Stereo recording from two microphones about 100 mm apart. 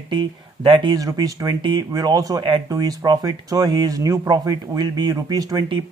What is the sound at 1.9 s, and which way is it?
Speech, 40° right (ahead or behind).